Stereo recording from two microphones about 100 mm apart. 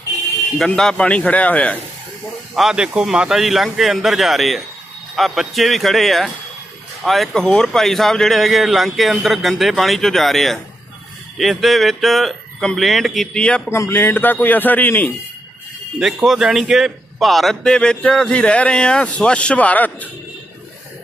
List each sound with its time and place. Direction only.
0.6 s a man's voice: 5° left (ahead or behind)
2.5 s speech: 5° right (ahead or behind)
13.7 s speech: 25° left (ahead or behind)
16.0 s a man's voice: 5° right (ahead or behind); by 20.1 s 15° left (ahead or behind)